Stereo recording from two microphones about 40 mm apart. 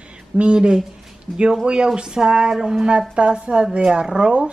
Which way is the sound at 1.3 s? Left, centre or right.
Left.